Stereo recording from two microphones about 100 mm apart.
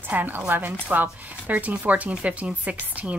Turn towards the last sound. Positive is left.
turn(degrees=-15)  # may be behind; listen again after turning